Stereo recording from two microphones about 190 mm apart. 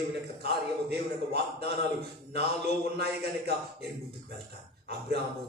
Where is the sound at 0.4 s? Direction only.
60° right (ahead or behind).